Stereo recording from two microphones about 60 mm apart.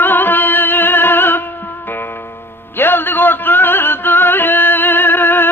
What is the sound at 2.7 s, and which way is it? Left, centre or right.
Music, left.